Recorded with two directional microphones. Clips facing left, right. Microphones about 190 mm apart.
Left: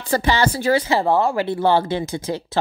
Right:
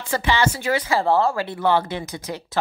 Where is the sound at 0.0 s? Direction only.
40° left (ahead or behind).